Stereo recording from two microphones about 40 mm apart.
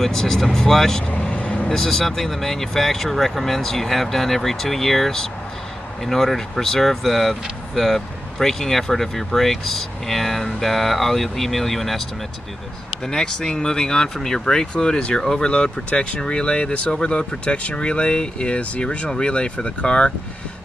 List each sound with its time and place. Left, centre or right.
0.0 s speech: centre
1.1 s vehicle: left
1.7 s speech: centre
13.0 s speech: centre